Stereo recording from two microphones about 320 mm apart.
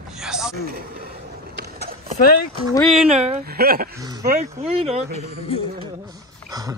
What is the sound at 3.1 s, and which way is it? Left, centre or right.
Speech, right.